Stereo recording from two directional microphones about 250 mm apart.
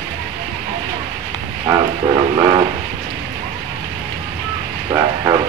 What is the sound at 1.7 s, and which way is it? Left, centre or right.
Train, centre.